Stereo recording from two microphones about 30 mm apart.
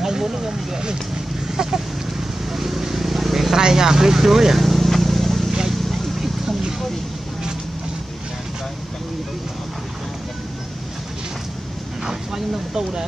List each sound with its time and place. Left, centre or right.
0.0 s speech: centre
1.5 s a sound: centre
2.5 s vehicle: centre
3.5 s speech: centre
4.6 s vehicle: centre
12.4 s a sound: centre